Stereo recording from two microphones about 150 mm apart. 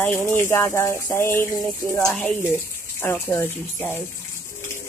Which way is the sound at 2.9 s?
15° left (ahead or behind).